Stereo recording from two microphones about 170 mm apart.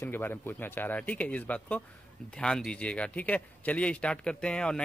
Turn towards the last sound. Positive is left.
turn(degrees=5)  # may be behind; listen again after turning